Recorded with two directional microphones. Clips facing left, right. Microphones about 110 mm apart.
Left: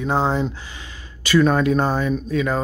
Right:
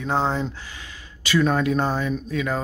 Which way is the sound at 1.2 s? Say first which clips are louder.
Left 4 dB; 50° left (ahead or behind).